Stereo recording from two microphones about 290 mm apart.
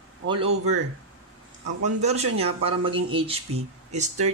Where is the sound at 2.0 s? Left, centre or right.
Right.